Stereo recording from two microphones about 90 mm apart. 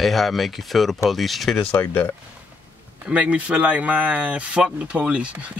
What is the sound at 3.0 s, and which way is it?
Speech, 15° right (ahead or behind).